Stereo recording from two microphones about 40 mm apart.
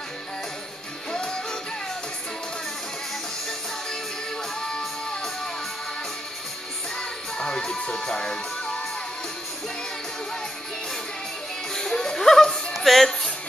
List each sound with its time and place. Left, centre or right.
1.1 s music: centre
4.6 s music: centre
7.0 s music: left
11.7 s music: centre